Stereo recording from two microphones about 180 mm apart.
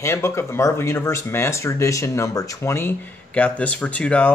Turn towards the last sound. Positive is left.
turn(degrees=5)  # may be behind; listen again after turning